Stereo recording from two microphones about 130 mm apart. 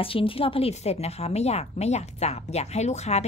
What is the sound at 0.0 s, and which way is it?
A woman's voice, 45° left (ahead or behind).